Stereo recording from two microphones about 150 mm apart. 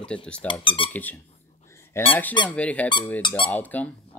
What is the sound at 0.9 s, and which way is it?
Speech, 10° left (ahead or behind).